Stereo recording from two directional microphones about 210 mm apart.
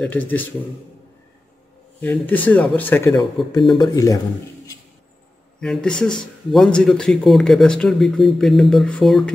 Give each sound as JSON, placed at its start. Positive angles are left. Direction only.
{"t": 0.0, "sound": "speech", "side_deg": 10}
{"t": 2.0, "sound": "speech", "side_deg": 10}
{"t": 5.6, "sound": "speech", "side_deg": 5}